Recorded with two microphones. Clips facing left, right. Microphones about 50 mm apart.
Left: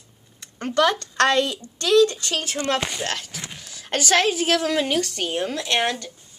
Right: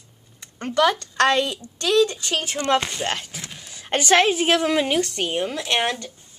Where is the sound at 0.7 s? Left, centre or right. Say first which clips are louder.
Even; centre.